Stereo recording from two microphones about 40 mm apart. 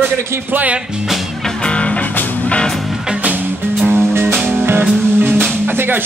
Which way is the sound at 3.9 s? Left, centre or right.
Right.